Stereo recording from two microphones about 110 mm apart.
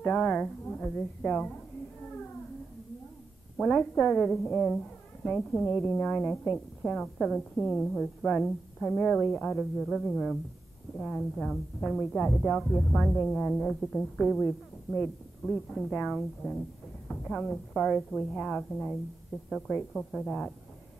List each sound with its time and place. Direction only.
0.0 s a woman's voice: 10° left (ahead or behind)
2.0 s a sound: 10° left (ahead or behind)
3.5 s a woman's voice: 5° left (ahead or behind)